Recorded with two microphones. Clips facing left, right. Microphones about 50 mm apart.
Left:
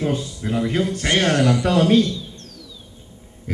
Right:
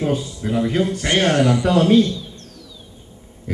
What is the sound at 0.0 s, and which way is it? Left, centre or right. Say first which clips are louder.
Speech: right 2 dB; centre.